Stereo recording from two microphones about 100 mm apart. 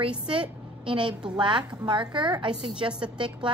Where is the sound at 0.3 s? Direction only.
60° right (ahead or behind).